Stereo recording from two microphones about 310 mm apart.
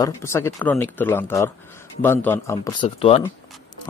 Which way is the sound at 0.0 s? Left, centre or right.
Centre.